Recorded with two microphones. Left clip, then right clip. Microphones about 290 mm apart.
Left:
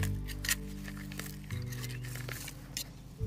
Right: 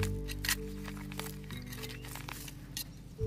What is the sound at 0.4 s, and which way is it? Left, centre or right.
Music, centre.